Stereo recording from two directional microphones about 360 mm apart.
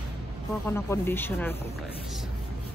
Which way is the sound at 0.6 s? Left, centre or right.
Centre.